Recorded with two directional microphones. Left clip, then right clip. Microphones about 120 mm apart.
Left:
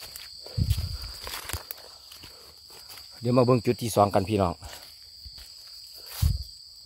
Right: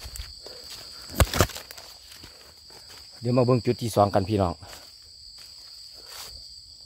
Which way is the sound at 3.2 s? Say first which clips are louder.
Left 1 dB; 35° left (ahead or behind).